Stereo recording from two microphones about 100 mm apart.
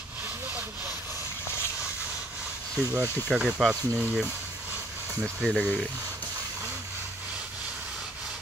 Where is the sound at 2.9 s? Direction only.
25° right (ahead or behind).